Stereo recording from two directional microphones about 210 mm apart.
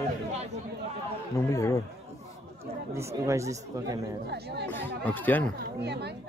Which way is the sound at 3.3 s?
15° right (ahead or behind).